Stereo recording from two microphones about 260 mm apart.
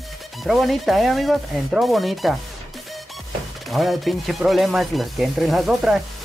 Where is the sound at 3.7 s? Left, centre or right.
Centre.